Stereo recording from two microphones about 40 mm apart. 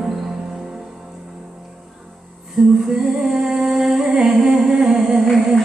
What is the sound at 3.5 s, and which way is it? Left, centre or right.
Humming, centre.